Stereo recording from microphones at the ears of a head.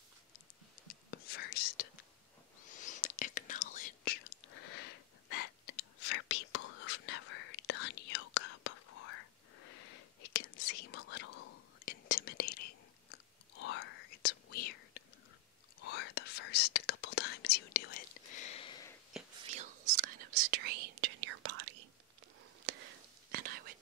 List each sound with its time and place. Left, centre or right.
0.8 s whispering: left
19.3 s whispering: right